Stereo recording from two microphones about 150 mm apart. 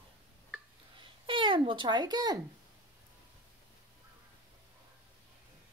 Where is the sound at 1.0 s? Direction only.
35° right (ahead or behind).